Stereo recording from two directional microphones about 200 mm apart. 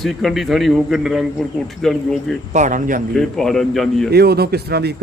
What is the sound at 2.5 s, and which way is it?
Speech, 40° right (ahead or behind).